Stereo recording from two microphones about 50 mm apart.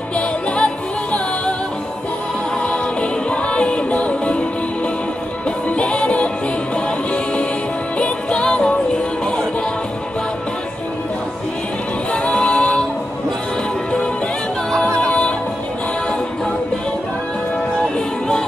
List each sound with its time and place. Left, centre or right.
0.1 s music: left
2.6 s music: left
5.7 s music: left
8.0 s music: left
12.1 s music: left
15.0 s music: centre